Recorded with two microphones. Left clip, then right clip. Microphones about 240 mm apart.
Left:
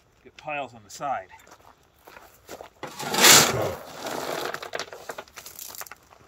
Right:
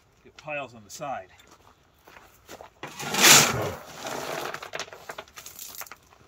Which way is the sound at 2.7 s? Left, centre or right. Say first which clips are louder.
Left 2 dB; left.